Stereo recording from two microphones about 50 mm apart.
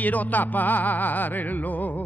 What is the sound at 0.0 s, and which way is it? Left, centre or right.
Music, left.